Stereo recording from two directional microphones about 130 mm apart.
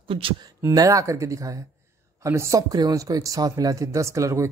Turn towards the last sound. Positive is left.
turn(degrees=-25)  # may be behind; listen again after turning